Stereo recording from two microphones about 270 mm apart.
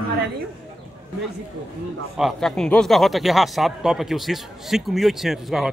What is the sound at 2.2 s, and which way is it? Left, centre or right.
A man's voice, centre.